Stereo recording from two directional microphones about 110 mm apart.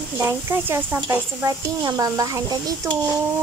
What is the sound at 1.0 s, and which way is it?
Speech, 40° right (ahead or behind).